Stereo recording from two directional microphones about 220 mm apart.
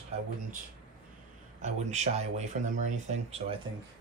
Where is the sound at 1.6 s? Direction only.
30° right (ahead or behind).